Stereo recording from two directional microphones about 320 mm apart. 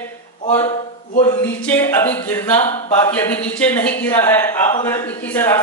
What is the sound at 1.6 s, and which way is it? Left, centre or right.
Speech, centre.